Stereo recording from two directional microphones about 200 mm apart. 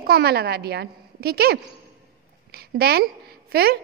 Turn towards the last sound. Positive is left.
turn(degrees=-50)  # may be behind; listen again after turning